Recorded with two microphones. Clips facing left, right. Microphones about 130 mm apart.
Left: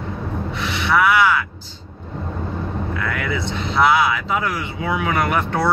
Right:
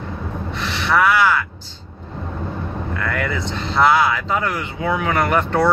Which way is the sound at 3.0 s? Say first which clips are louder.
Right 3 dB; 10° left (ahead or behind).